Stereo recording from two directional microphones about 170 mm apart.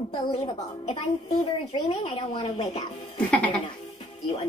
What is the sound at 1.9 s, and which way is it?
Speech, 35° left (ahead or behind).